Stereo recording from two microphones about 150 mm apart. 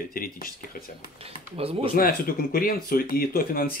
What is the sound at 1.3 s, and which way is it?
Speech, 40° right (ahead or behind).